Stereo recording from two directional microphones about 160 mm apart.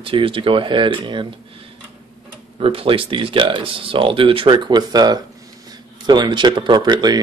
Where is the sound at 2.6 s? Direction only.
35° right (ahead or behind).